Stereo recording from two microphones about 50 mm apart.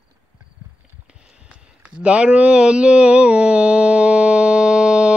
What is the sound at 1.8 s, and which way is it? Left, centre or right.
Mantra, right.